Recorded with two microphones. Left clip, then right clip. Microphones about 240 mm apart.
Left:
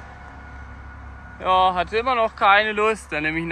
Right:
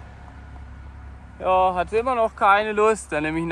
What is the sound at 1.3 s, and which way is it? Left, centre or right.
Speech, right.